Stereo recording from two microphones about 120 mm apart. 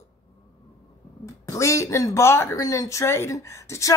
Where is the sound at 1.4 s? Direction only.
25° left (ahead or behind).